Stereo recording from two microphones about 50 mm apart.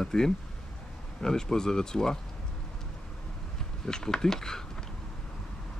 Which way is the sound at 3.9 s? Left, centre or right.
Centre.